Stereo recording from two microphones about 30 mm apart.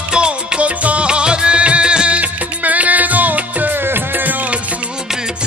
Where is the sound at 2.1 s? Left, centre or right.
Right.